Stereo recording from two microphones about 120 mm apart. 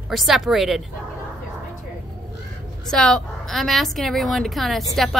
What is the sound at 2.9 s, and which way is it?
Speech, 5° left (ahead or behind).